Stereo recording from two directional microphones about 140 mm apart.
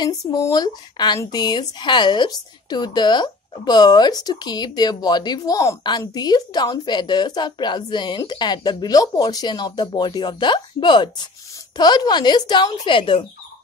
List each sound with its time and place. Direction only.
0.3 s speech: 25° left (ahead or behind)